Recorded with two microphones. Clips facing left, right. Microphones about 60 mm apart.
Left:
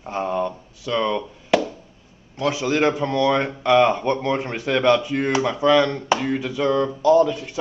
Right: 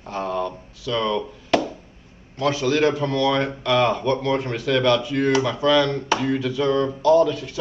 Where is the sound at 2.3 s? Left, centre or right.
Centre.